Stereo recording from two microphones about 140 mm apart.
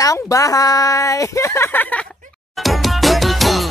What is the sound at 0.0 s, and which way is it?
A woman's voice, 25° left (ahead or behind).